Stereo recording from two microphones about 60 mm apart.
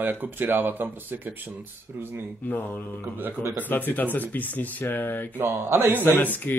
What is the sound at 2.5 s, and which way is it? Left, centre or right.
Speech, left.